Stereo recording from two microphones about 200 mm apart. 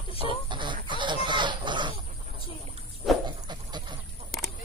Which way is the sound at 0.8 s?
25° right (ahead or behind).